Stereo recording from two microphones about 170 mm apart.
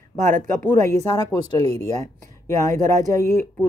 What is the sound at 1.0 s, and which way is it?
Speech, 20° left (ahead or behind).